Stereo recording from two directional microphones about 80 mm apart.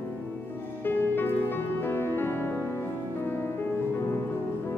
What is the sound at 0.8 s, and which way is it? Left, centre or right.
Music, left.